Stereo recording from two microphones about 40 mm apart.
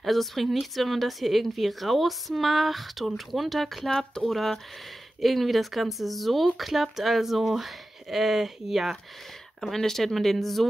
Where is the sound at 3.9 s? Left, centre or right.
Centre.